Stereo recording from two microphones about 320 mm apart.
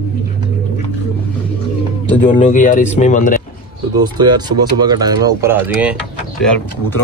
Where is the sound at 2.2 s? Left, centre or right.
Left.